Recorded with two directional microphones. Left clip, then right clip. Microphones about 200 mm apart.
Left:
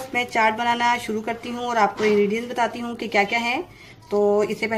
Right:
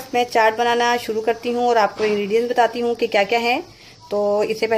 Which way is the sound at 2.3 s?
40° right (ahead or behind).